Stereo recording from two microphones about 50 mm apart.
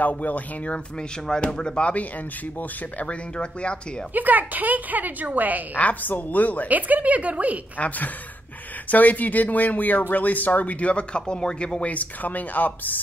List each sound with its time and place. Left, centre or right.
0.0 s speech: left
1.4 s speech: left
4.1 s a woman's voice: right
5.8 s speech: left
6.7 s a woman's voice: right
8.9 s speech: left